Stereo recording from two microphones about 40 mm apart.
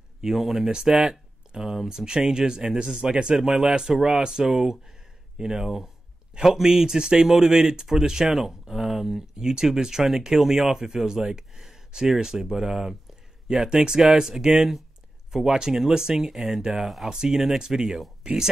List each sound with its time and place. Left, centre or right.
0.2 s speech: centre
16.8 s speech: centre
17.1 s speech: centre